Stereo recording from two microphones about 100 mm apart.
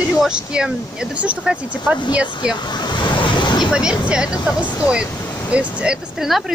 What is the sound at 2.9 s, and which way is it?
Waves, 50° left (ahead or behind).